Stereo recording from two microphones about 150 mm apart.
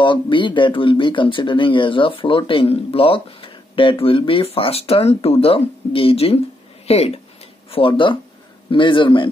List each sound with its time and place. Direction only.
0.0 s speech: 30° left (ahead or behind)